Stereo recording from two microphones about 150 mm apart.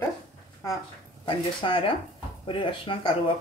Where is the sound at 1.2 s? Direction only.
35° left (ahead or behind).